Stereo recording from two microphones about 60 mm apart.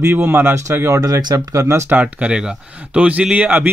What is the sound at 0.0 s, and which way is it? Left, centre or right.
Speech, right.